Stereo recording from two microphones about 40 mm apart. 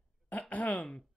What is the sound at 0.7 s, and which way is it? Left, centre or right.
Speech, left.